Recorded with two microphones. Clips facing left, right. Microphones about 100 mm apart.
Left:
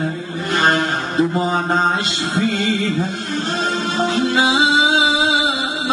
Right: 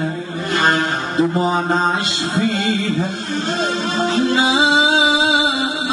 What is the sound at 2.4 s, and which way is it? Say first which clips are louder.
Music: even; 45° right (ahead or behind).